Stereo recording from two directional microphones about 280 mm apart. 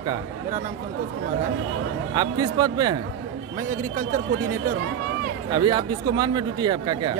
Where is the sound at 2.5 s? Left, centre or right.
Centre.